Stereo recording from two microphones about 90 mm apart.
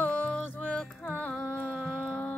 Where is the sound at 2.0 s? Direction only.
20° left (ahead or behind).